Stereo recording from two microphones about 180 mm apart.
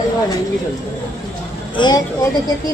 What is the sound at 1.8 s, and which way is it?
Speech, 25° left (ahead or behind).